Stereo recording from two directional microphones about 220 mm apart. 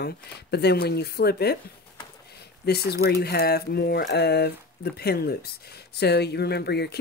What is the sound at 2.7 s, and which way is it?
Speech, 45° left (ahead or behind).